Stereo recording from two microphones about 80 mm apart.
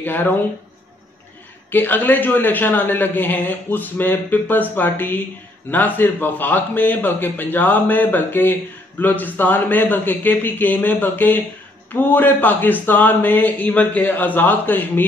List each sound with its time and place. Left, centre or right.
0.0 s speech: left
1.7 s a man's voice: left